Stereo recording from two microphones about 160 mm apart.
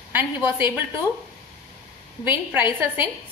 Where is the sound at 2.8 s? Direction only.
15° right (ahead or behind).